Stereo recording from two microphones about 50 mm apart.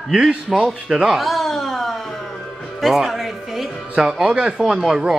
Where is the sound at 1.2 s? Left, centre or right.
Centre.